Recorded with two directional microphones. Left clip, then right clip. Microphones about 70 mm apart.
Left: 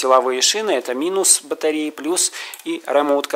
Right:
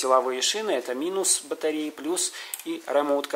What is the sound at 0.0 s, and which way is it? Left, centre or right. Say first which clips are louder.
Speech: left 7 dB; left.